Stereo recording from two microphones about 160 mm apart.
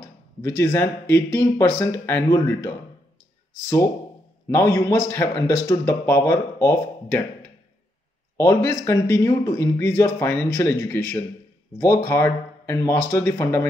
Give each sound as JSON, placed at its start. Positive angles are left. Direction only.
{"t": 0.4, "sound": "speech", "side_deg": 15}
{"t": 8.4, "sound": "speech", "side_deg": 15}